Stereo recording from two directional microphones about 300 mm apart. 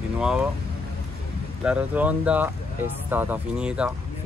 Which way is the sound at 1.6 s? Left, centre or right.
Centre.